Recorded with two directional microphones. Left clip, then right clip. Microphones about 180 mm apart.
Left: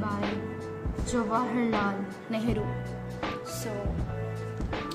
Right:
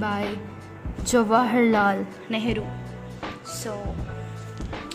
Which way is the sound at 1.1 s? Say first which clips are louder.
Right 9 dB; 80° right.